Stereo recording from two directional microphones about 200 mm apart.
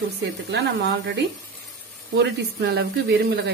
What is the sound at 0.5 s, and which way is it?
Speech, 60° right (ahead or behind).